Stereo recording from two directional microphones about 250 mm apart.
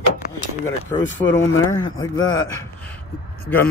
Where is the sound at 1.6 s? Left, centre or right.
Centre.